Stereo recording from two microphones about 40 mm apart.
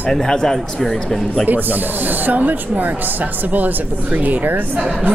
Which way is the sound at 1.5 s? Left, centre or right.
Right.